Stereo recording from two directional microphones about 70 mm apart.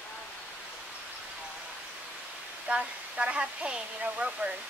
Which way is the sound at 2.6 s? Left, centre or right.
Centre.